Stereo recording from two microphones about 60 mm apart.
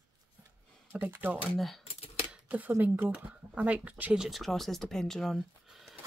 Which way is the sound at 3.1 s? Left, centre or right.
Centre.